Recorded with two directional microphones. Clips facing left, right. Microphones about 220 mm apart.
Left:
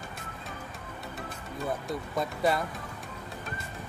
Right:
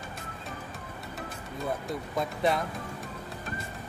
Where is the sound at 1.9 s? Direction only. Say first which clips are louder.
Even; centre (ahead or behind).